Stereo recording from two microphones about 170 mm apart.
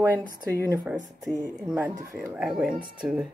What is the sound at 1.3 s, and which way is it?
A woman's voice, 5° right (ahead or behind).